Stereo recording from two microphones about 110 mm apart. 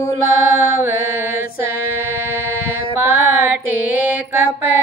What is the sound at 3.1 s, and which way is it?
Mantra, 20° right (ahead or behind).